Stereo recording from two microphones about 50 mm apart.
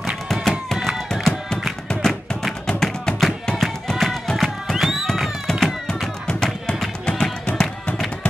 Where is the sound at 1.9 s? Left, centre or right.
Centre.